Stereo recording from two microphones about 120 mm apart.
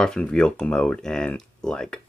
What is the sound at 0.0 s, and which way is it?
Speech, 5° left (ahead or behind).